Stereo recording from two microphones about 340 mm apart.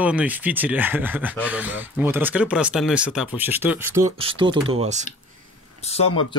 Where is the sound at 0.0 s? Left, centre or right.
Centre.